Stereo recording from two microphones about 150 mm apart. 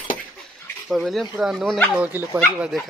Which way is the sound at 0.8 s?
Centre (ahead or behind).